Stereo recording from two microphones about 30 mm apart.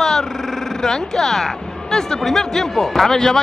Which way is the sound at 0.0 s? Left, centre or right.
Centre.